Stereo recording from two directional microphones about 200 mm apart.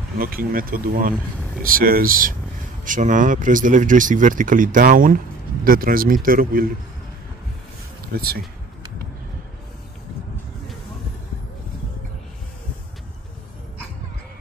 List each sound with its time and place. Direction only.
0.2 s speech: 45° right (ahead or behind)
8.1 s speech: 50° right (ahead or behind)